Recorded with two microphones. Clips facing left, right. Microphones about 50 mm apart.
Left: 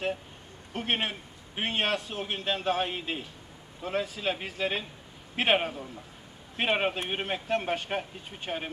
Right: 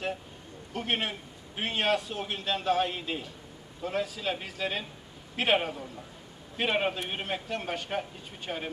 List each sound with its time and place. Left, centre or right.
0.7 s a man's voice: left
8.5 s speech: centre